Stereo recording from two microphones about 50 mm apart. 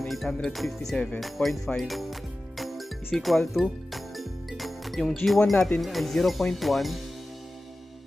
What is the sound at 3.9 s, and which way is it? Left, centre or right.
Music, centre.